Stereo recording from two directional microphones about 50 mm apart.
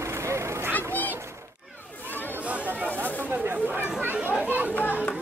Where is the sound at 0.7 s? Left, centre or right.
Left.